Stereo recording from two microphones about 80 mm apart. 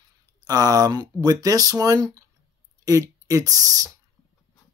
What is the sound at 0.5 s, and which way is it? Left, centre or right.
Speech, right.